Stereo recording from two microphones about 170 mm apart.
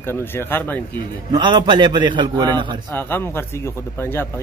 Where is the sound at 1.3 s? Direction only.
25° right (ahead or behind).